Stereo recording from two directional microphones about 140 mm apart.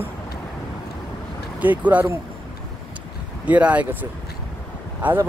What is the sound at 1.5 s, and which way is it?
Speech, 10° right (ahead or behind).